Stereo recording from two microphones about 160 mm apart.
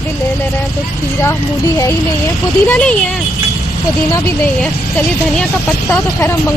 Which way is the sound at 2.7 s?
5° left (ahead or behind).